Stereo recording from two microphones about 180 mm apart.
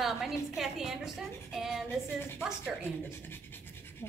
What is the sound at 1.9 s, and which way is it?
Speech, 15° left (ahead or behind).